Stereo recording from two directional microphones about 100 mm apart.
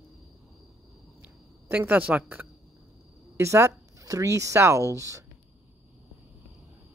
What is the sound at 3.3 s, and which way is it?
Speech, 30° right (ahead or behind).